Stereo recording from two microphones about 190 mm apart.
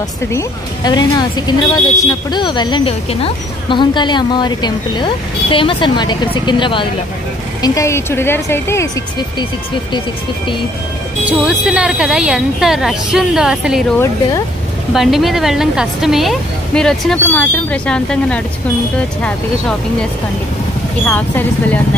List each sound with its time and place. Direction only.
0.3 s speech: 20° left (ahead or behind)
11.2 s a woman's voice: 5° right (ahead or behind)
15.0 s a woman's voice: centre (ahead or behind)
21.0 s speech: 10° left (ahead or behind)